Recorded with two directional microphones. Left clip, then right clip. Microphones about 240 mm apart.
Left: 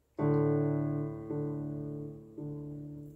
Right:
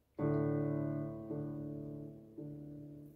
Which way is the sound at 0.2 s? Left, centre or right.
Left.